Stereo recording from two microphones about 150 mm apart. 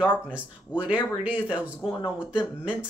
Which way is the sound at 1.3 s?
30° left (ahead or behind).